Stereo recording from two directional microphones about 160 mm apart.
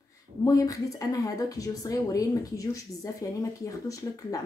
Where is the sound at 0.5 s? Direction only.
20° left (ahead or behind).